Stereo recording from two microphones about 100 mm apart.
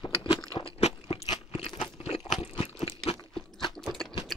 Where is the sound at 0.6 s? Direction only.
75° left (ahead or behind).